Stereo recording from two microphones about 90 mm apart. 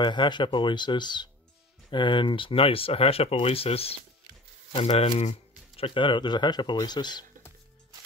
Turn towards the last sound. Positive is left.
turn(degrees=55)  # may be behind; listen again after turning